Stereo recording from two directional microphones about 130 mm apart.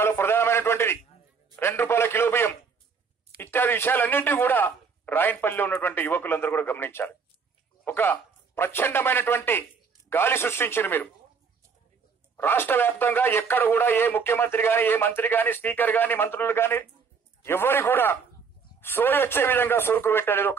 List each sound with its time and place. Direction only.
0.0 s a sound: 20° left (ahead or behind)
1.6 s a man's voice: 15° left (ahead or behind)
12.4 s speech: 15° left (ahead or behind)